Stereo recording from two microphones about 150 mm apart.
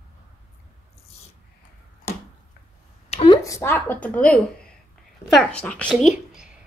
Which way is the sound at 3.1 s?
35° left (ahead or behind).